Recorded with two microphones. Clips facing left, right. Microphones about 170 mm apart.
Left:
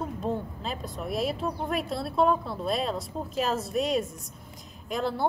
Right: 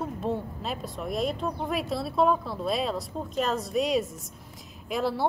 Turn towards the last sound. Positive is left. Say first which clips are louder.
# right 1 dB
turn(degrees=-5)  # may be behind; listen again after turning